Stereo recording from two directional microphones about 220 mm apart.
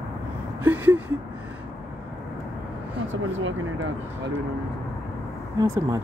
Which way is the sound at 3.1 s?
60° right (ahead or behind).